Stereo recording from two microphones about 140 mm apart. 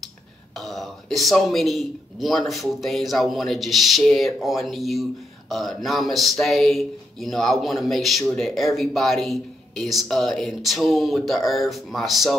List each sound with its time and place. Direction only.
0.6 s speech: centre (ahead or behind)